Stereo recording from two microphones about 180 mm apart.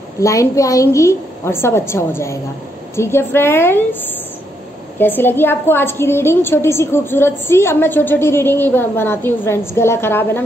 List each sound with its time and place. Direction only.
0.2 s a woman's voice: 15° left (ahead or behind)